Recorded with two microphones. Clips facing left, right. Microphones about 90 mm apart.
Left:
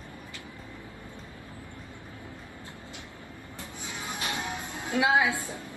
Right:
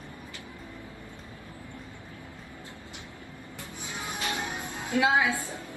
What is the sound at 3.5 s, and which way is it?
Music, 20° right (ahead or behind).